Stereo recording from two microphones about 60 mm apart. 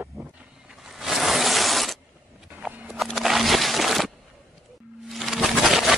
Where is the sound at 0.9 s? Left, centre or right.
Centre.